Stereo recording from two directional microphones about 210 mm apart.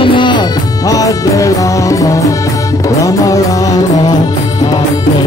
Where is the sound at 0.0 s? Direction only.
25° left (ahead or behind).